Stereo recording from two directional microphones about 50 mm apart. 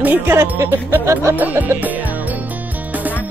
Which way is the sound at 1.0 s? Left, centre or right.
Right.